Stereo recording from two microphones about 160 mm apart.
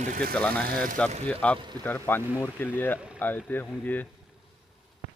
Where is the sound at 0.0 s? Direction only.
60° right (ahead or behind).